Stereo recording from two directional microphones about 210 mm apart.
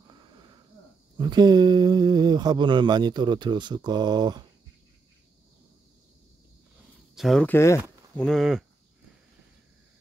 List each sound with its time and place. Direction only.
0.1 s a sound: 20° right (ahead or behind)
1.1 s speech: 20° right (ahead or behind)
7.2 s speech: centre (ahead or behind)
8.3 s speech: centre (ahead or behind)